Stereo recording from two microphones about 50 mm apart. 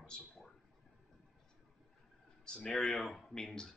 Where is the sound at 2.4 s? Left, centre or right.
Centre.